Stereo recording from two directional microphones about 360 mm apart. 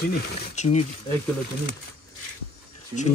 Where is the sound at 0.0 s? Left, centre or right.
Left.